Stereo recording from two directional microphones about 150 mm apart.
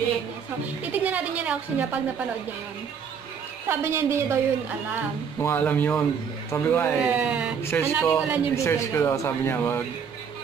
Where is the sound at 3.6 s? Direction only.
15° right (ahead or behind).